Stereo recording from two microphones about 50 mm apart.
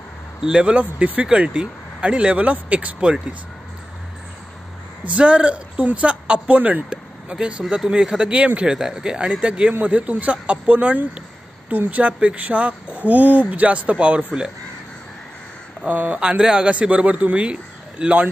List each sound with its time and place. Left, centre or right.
0.4 s a man's voice: centre
3.0 s a man's voice: centre
5.0 s a man's voice: right
6.9 s vehicle: centre
7.7 s a man's voice: centre
15.9 s speech: right
16.2 s a man's voice: centre